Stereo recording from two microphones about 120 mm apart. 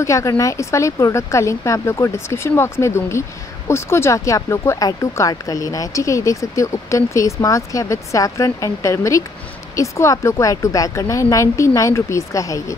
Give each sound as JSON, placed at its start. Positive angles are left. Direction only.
{"t": 0.0, "sound": "speech", "side_deg": 25}